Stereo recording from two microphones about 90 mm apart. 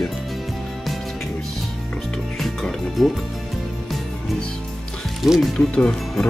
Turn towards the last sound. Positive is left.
turn(degrees=5)  # may be behind; listen again after turning